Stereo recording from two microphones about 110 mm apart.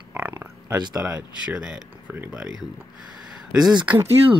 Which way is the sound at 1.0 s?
10° right (ahead or behind).